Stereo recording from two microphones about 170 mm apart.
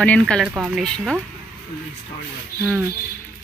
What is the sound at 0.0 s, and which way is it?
Speech, 5° left (ahead or behind).